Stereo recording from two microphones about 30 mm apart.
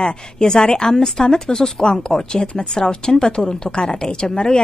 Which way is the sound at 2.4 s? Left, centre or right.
Left.